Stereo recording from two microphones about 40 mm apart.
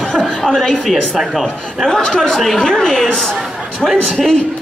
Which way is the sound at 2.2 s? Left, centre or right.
Centre.